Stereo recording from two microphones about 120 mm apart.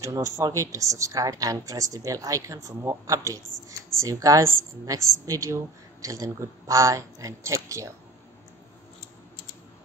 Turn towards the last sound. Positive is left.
turn(degrees=-25)  # may be behind; listen again after turning